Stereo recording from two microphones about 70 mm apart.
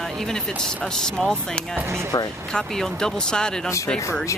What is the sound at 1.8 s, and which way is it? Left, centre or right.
Speech, right.